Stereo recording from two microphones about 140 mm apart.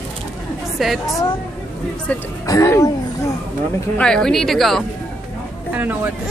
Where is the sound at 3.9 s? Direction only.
5° left (ahead or behind).